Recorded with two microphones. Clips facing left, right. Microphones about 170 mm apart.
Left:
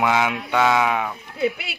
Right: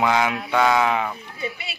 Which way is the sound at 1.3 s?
70° left (ahead or behind).